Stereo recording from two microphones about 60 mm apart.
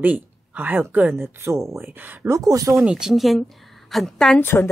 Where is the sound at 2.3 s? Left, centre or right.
Right.